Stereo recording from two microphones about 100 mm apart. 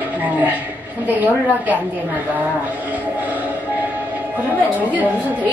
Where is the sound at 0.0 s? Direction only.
15° right (ahead or behind).